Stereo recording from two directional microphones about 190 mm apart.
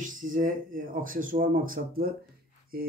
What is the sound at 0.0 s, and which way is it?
Speech, 45° right (ahead or behind).